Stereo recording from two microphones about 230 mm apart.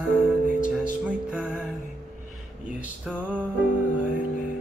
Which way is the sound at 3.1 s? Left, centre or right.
Centre.